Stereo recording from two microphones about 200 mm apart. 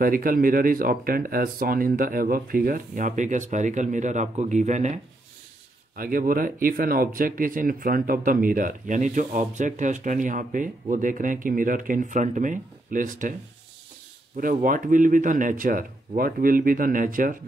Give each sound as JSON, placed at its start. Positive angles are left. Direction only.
{"t": 0.0, "sound": "speech", "side_deg": -45}
{"t": 14.3, "sound": "speech", "side_deg": -45}